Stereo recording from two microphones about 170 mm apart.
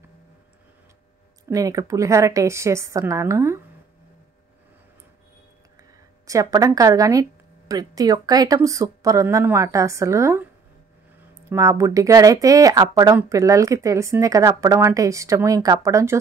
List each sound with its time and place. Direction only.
1.5 s a woman's voice: 20° right (ahead or behind)
5.8 s speech: 20° right (ahead or behind)